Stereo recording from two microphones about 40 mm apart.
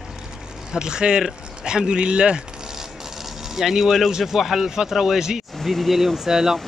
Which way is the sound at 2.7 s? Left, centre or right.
Centre.